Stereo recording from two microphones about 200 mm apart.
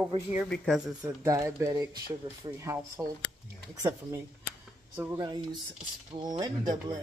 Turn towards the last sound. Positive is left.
turn(degrees=-20)  # may be behind; listen again after turning